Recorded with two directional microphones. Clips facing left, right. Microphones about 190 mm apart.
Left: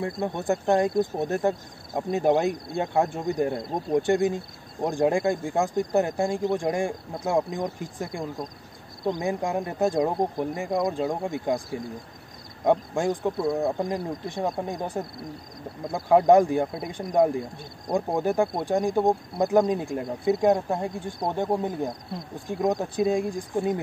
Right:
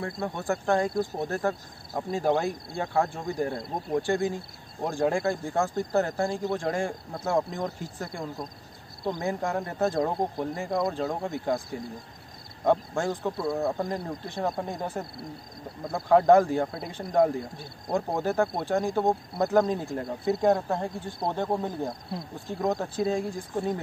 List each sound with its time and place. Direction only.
0.0 s speech: 20° left (ahead or behind)
12.6 s speech: 15° left (ahead or behind)
16.1 s speech: 15° left (ahead or behind)